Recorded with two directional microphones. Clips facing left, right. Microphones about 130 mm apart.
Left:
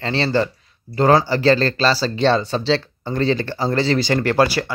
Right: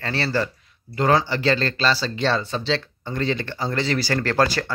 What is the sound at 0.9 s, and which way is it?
A man's voice, 35° left (ahead or behind).